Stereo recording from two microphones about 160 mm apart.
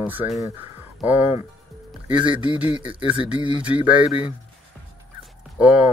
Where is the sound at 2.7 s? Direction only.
30° right (ahead or behind).